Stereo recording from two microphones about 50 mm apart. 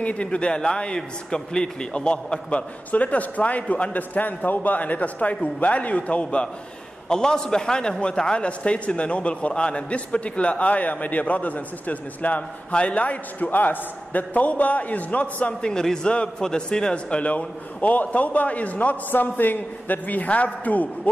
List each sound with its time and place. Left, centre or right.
0.0 s a man's voice: left
15.7 s a man's voice: centre; by 21.1 s left